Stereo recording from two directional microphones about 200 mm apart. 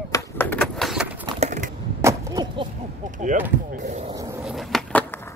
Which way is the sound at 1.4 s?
35° right (ahead or behind).